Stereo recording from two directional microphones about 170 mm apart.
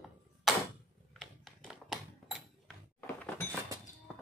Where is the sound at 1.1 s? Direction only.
Centre (ahead or behind).